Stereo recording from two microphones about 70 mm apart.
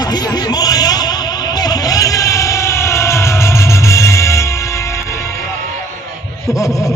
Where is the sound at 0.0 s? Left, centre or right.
Left.